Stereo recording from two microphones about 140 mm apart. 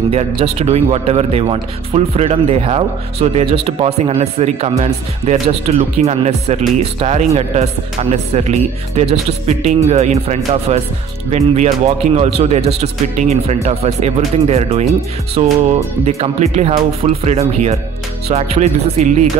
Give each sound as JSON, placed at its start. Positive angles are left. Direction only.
{"t": 0.1, "sound": "speech", "side_deg": -45}